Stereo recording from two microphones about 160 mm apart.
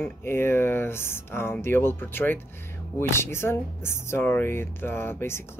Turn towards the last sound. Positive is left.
turn(degrees=15)  # may be behind; listen again after turning